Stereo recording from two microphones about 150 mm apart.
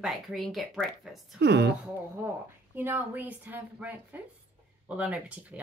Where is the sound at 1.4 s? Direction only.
90° right.